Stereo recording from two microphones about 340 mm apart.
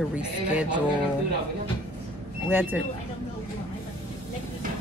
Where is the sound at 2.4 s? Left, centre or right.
Centre.